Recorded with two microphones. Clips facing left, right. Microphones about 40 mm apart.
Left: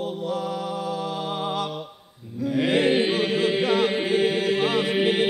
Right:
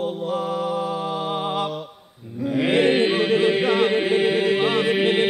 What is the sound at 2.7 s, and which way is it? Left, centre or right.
Chant, centre.